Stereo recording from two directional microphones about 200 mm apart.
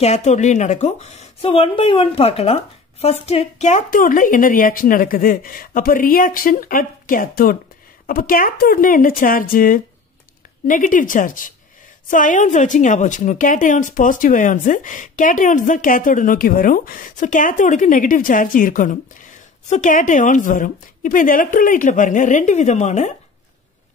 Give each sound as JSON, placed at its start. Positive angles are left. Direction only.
{"t": 0.0, "sound": "a woman's voice", "side_deg": 35}